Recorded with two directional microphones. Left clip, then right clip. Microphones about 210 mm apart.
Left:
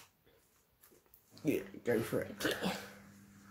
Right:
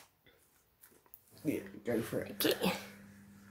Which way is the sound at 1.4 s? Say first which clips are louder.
Left 2 dB; 25° left (ahead or behind).